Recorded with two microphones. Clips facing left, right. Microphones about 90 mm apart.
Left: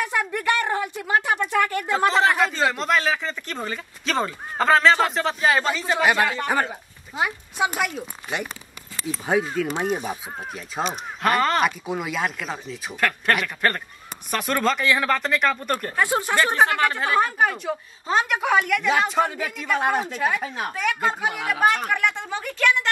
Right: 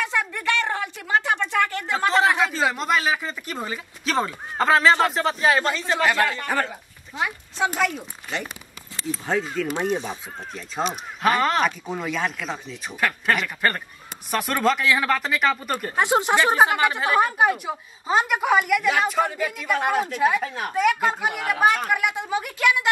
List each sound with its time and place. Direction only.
0.0 s a sound: 20° left (ahead or behind)
1.9 s a sound: 5° left (ahead or behind)
2.4 s speech: 5° right (ahead or behind)
11.2 s speech: centre (ahead or behind)
16.0 s speech: 20° right (ahead or behind); by 18.9 s 5° right (ahead or behind)
19.2 s speech: 15° left (ahead or behind)
20.2 s speech: 15° right (ahead or behind)
20.4 s speech: 20° left (ahead or behind)
20.8 s speech: 5° right (ahead or behind)